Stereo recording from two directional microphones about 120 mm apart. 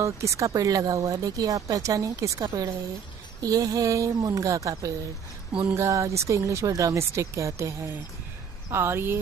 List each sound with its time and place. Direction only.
0.0 s speech: 25° right (ahead or behind)